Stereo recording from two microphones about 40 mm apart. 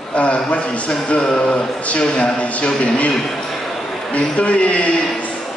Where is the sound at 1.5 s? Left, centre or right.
Left.